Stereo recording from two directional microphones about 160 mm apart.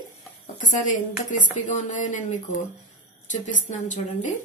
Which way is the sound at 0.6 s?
50° left (ahead or behind).